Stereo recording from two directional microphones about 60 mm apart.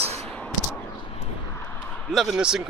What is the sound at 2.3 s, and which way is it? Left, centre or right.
Speech, centre.